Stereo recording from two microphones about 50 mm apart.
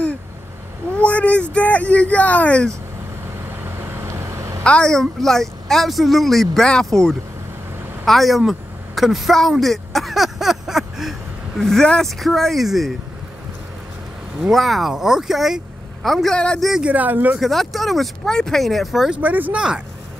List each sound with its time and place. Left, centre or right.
0.9 s speech: left
3.8 s vehicle: right
4.6 s a woman's voice: left
4.9 s speech: centre
9.5 s a sound: centre
12.2 s speech: centre
14.5 s speech: centre
16.8 s speech: right
17.4 s speech: centre
19.2 s speech: right
19.5 s speech: centre